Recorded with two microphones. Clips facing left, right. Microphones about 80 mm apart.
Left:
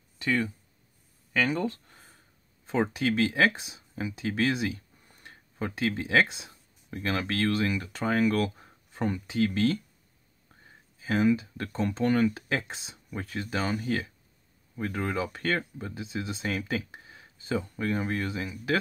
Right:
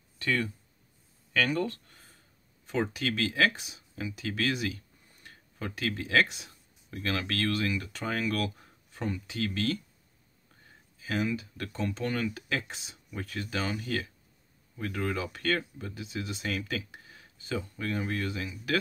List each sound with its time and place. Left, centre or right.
0.2 s speech: centre
11.0 s speech: left